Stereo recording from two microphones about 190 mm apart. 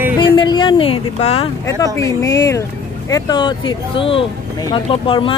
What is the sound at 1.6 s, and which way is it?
Speech, 15° left (ahead or behind).